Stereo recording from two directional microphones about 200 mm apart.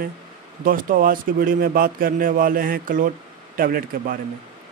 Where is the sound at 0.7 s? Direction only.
45° right (ahead or behind).